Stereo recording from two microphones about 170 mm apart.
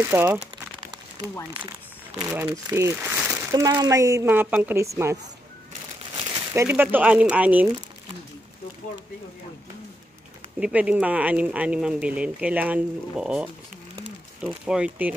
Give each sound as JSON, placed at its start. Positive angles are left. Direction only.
{"t": 0.0, "sound": "speech", "side_deg": -15}
{"t": 2.2, "sound": "speech", "side_deg": -15}
{"t": 6.5, "sound": "speech", "side_deg": -15}
{"t": 10.6, "sound": "speech", "side_deg": -5}